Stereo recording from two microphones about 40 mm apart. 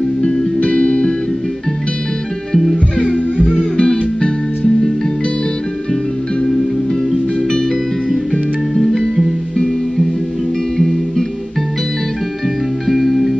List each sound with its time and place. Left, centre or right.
0.2 s music: left
3.0 s music: left
8.7 s music: centre
10.8 s music: centre
12.8 s music: centre